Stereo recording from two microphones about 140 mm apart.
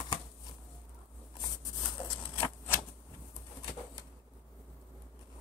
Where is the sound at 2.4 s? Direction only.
15° left (ahead or behind).